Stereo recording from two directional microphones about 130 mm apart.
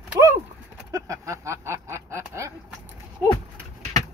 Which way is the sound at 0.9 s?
25° right (ahead or behind).